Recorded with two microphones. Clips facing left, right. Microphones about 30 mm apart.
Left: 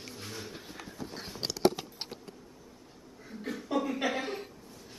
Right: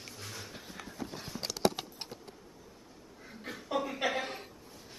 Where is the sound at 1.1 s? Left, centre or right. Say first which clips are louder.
Even; left.